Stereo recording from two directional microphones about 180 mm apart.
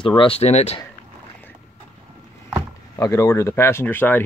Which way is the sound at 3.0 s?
15° left (ahead or behind).